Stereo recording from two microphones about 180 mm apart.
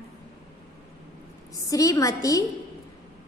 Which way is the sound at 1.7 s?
20° left (ahead or behind).